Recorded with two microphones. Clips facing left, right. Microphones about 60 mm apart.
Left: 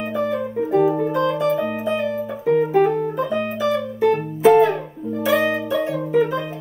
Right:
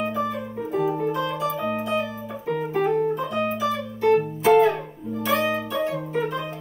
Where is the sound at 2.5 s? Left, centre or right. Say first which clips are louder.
Left 6 dB; centre.